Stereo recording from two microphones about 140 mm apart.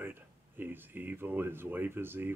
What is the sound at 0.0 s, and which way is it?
Speech, 15° right (ahead or behind).